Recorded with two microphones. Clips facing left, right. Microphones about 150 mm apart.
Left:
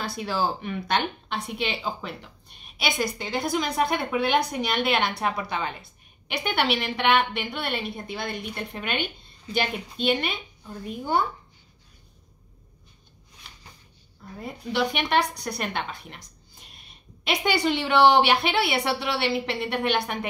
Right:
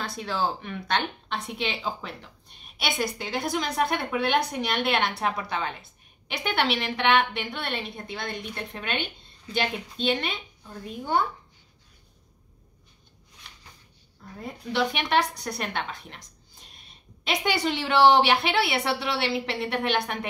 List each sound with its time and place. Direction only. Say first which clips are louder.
0.0 s a woman's voice: left 2 dB; 5° left (ahead or behind)
14.4 s a woman's voice: left 1 dB; 5° left (ahead or behind)